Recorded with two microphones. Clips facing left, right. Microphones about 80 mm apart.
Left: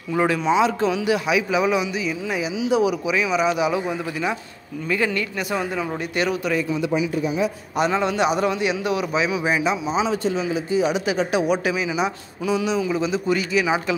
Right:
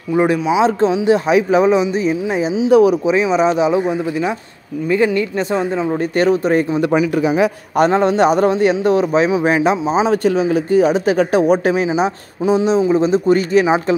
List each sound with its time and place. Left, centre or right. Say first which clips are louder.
0.1 s speech: right 5 dB; centre
0.7 s a man's voice: right 7 dB; right
2.7 s speech: right 9 dB; right
3.1 s a man's voice: right 7 dB; right
6.8 s speech: right 7 dB; right